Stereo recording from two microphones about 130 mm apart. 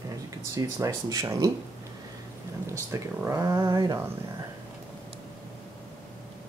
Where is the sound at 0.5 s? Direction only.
30° right (ahead or behind).